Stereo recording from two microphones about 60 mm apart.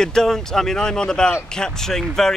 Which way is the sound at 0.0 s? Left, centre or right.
Centre.